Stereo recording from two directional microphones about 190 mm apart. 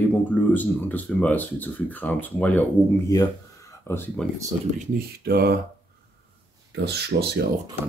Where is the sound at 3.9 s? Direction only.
10° left (ahead or behind).